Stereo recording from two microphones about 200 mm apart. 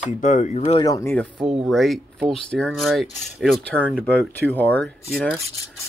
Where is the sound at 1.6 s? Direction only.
Centre (ahead or behind).